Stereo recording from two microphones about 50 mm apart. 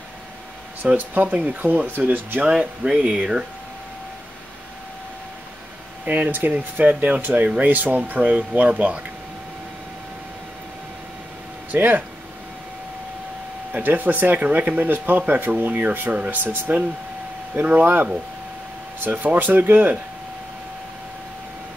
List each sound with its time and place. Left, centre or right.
0.8 s speech: right
2.6 s speech: right
6.0 s speech: right
11.7 s speech: right
13.7 s speech: right
19.0 s speech: right